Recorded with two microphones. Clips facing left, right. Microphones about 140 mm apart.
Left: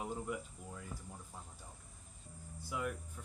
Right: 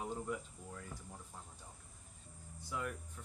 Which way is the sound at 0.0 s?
10° left (ahead or behind).